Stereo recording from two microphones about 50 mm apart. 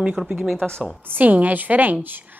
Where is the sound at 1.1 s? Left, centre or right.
Right.